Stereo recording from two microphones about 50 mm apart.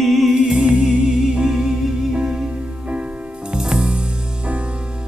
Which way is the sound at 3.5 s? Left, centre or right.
Centre.